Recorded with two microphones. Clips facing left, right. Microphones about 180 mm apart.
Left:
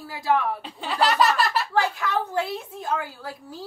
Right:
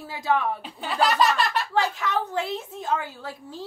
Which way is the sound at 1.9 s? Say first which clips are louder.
Left 1 dB; 20° right (ahead or behind).